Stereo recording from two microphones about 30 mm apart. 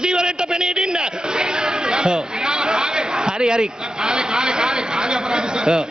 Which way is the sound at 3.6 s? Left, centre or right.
Centre.